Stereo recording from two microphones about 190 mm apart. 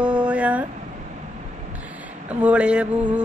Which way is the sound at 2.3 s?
5° right (ahead or behind).